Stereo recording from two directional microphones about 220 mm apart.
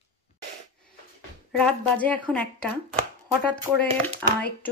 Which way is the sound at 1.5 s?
5° left (ahead or behind).